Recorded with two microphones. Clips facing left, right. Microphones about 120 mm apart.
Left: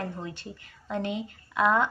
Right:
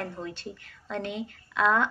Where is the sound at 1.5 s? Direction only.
15° left (ahead or behind).